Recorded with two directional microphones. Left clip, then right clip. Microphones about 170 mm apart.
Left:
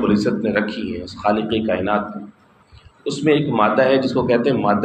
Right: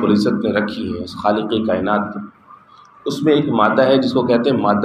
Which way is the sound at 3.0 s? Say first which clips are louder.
Right 2 dB; 20° right (ahead or behind).